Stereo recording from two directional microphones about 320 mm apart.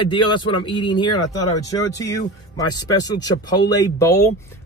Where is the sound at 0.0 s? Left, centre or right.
Centre.